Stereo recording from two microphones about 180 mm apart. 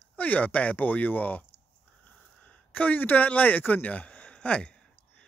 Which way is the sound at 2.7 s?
10° left (ahead or behind).